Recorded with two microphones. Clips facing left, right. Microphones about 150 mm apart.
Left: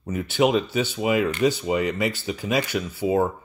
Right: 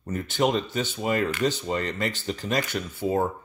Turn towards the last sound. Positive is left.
turn(degrees=5)  # may be behind; listen again after turning